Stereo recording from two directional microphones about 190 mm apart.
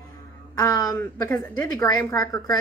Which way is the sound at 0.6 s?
20° left (ahead or behind).